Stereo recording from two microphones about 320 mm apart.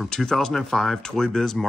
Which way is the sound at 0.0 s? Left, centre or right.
Centre.